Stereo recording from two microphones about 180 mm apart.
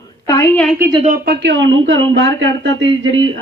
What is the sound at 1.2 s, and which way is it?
Speech, 70° right (ahead or behind).